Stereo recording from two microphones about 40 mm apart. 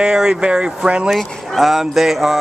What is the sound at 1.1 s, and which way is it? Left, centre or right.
Speech, centre.